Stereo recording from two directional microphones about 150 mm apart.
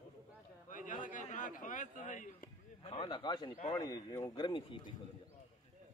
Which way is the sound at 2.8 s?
35° left (ahead or behind).